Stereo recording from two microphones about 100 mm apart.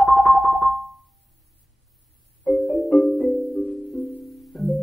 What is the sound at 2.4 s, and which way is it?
Marimba, 15° left (ahead or behind).